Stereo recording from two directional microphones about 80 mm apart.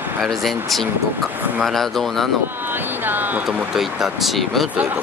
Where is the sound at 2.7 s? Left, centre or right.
Right.